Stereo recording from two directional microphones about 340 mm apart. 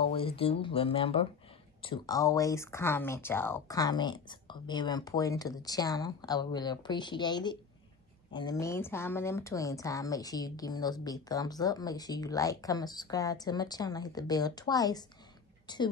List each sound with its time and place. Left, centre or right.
0.4 s a woman's voice: centre